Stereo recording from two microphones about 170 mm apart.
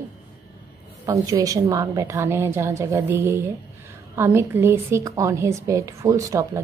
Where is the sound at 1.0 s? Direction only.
20° right (ahead or behind).